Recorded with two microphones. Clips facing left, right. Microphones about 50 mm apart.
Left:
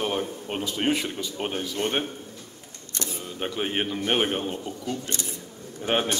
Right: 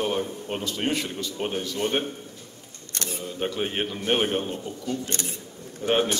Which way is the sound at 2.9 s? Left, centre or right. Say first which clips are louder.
Even; right.